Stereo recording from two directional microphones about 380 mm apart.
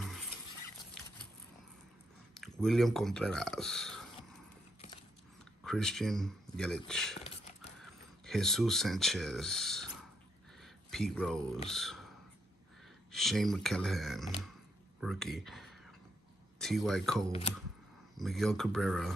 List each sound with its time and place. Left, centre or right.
2.3 s speech: centre
5.6 s speech: centre
13.1 s speech: centre
17.3 s speech: centre
18.1 s speech: centre